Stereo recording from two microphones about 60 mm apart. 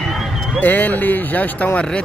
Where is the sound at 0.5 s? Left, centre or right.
Left.